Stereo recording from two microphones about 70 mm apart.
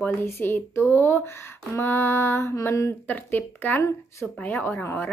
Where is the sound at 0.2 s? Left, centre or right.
Left.